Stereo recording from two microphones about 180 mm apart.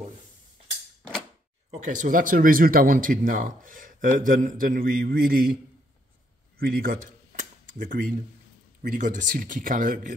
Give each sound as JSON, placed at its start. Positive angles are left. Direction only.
{"t": 1.9, "sound": "speech", "side_deg": -45}
{"t": 6.6, "sound": "a sound", "side_deg": -55}
{"t": 8.8, "sound": "speech", "side_deg": -45}